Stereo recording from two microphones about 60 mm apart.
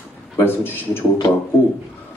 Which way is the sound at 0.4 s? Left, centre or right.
Left.